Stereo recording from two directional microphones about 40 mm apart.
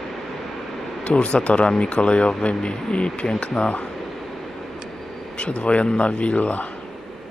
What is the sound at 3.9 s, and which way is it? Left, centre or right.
Vehicle, centre.